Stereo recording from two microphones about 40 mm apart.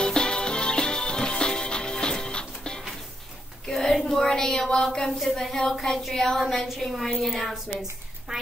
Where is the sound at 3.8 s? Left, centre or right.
Centre.